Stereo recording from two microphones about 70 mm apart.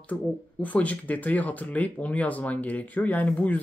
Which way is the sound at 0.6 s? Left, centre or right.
Left.